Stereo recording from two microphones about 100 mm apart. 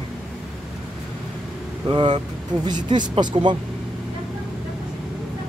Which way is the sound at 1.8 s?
50° right (ahead or behind).